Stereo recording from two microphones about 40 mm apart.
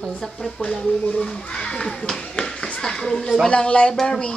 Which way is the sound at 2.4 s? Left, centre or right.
Centre.